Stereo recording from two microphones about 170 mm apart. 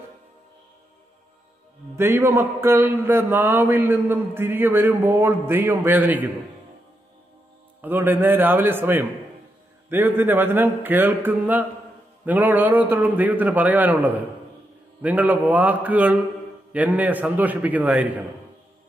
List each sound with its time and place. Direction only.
2.0 s a man's voice: 15° right (ahead or behind)
7.8 s a man's voice: 10° right (ahead or behind)